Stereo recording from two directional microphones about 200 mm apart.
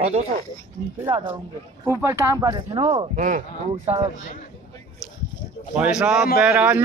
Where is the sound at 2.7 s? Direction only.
30° right (ahead or behind).